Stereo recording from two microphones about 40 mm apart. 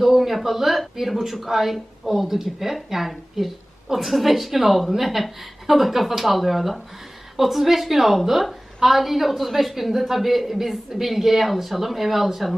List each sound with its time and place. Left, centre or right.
0.0 s speech: centre